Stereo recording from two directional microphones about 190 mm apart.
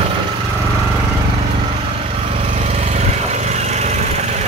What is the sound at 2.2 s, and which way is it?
Lawn mower, 30° right (ahead or behind).